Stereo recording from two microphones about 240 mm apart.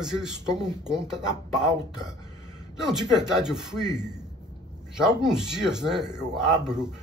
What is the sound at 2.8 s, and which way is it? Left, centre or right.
Speech, centre.